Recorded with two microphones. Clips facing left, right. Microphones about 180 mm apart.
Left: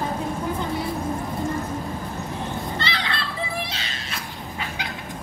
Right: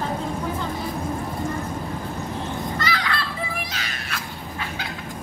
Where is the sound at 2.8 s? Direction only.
30° left (ahead or behind).